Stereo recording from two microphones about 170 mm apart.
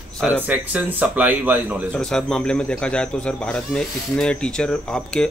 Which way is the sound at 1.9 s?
5° left (ahead or behind).